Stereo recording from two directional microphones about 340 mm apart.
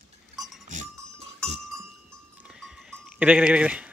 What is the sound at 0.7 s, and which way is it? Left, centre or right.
Goat, centre.